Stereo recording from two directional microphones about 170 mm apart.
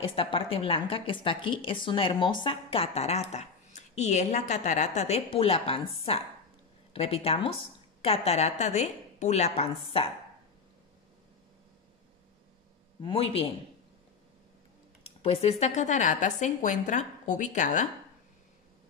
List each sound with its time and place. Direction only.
0.0 s a woman's voice: 30° left (ahead or behind)
13.0 s a woman's voice: 35° left (ahead or behind)
15.0 s a sound: 35° left (ahead or behind)
15.6 s a woman's voice: 45° left (ahead or behind)